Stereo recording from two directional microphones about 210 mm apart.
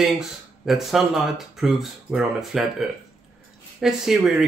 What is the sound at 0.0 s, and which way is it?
Speech, centre (ahead or behind).